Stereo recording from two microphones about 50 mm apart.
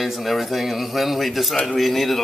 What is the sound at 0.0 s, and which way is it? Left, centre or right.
Speech, centre.